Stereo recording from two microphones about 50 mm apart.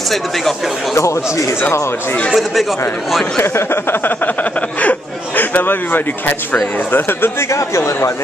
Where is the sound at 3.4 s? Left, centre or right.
Left.